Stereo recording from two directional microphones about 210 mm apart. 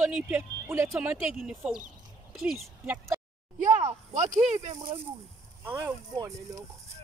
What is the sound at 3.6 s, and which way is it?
Speech, 40° right (ahead or behind).